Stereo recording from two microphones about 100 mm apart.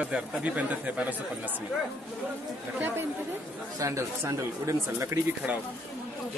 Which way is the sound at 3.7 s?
30° right (ahead or behind).